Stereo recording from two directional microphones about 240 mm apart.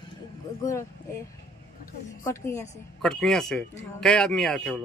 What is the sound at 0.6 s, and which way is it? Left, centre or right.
Speech, centre.